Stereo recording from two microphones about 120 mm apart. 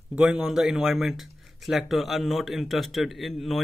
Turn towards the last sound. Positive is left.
turn(degrees=0)  # may be behind; listen again after turning